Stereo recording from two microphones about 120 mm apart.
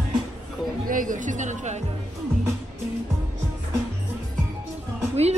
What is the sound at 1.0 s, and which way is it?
Speech, 90° right.